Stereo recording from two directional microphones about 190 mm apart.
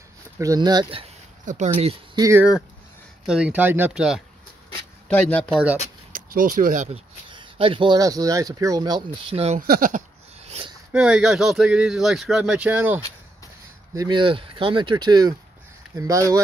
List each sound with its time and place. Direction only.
0.4 s speech: 20° right (ahead or behind)
1.4 s speech: 40° right (ahead or behind)
2.1 s speech: 15° right (ahead or behind)
3.3 s speech: 5° right (ahead or behind)
5.0 s speech: 5° left (ahead or behind)
6.1 s speech: 45° right (ahead or behind)
7.2 s speech: 25° right (ahead or behind)
9.6 s a sound: 45° right (ahead or behind)
10.9 s speech: 5° right (ahead or behind)
13.9 s speech: 25° right (ahead or behind)